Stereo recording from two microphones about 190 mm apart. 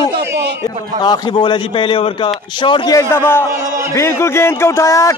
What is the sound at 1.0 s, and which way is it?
A man's voice, 20° left (ahead or behind).